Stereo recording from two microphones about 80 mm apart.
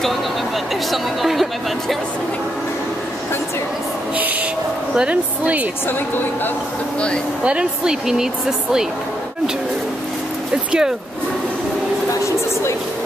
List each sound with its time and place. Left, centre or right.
0.9 s speech: centre
4.9 s a woman's voice: centre
5.9 s a woman's voice: left
7.4 s a woman's voice: centre
10.5 s speech: centre